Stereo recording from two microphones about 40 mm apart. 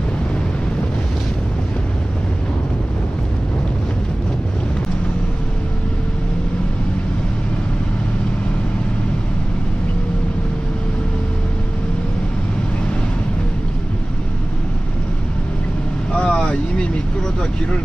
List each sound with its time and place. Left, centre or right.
16.1 s vehicle: left